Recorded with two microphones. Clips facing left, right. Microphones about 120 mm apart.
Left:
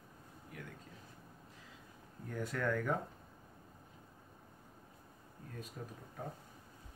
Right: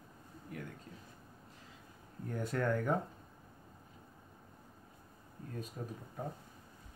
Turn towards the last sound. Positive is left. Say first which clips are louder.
# right 4 dB
turn(degrees=-25)  # may be behind; listen again after turning